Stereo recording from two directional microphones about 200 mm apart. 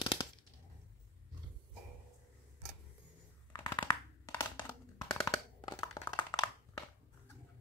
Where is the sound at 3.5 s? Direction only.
25° left (ahead or behind).